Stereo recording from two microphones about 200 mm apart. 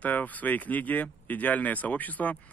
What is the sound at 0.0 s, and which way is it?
Speech, 10° left (ahead or behind).